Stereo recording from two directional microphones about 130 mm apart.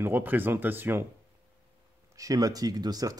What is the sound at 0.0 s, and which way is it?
Speech, 15° right (ahead or behind).